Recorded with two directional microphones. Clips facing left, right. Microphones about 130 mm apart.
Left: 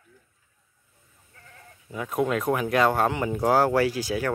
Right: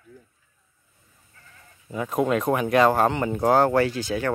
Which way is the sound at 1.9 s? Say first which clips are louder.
Right 3 dB; centre (ahead or behind).